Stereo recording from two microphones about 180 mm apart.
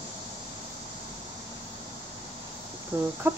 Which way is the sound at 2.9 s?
10° right (ahead or behind).